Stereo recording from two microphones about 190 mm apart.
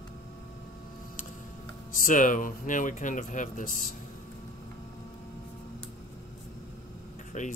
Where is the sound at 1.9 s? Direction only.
45° left (ahead or behind).